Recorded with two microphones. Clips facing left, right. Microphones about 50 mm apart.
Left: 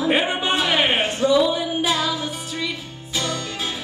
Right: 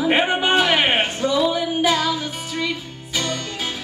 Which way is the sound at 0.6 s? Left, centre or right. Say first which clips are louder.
Right 1 dB; right.